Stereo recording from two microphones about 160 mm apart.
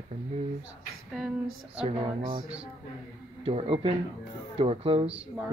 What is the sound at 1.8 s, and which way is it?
Speech, 35° right (ahead or behind).